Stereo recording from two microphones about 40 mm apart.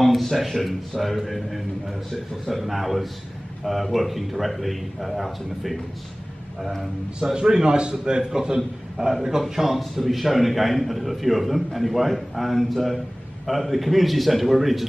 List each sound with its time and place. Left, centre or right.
0.0 s a man's voice: centre
7.3 s a man's voice: centre
8.5 s a man's voice: centre
9.4 s a man's voice: centre